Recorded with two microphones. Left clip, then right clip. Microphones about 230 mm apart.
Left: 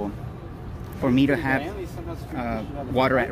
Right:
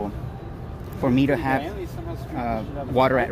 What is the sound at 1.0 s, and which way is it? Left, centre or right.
Speech, centre.